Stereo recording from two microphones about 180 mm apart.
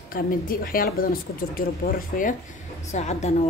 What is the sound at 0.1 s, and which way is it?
A woman's voice, 55° left (ahead or behind).